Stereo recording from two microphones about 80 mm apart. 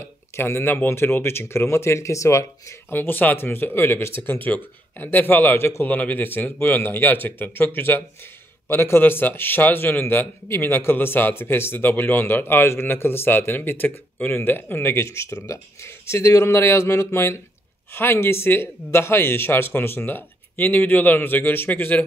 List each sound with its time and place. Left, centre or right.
0.0 s speech: left
2.9 s a man's voice: left